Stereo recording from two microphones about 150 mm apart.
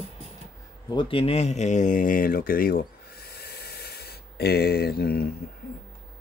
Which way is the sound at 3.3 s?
90° left.